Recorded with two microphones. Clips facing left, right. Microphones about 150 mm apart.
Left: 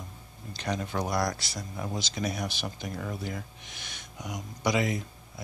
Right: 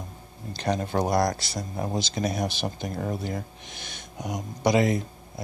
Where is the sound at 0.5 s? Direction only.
40° right (ahead or behind).